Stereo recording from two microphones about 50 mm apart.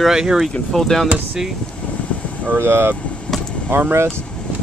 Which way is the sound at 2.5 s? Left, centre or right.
Right.